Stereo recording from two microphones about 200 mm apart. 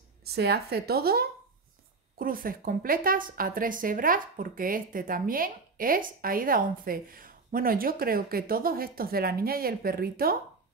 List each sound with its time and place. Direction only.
0.2 s a woman's voice: 55° right (ahead or behind)